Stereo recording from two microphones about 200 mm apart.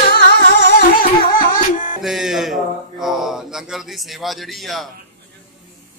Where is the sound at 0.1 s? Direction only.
55° left (ahead or behind).